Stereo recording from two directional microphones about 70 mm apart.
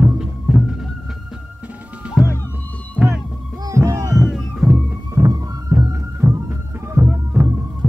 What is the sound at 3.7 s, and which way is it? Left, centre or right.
Music, right.